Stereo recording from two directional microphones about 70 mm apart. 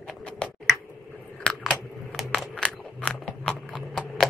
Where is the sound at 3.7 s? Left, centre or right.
Centre.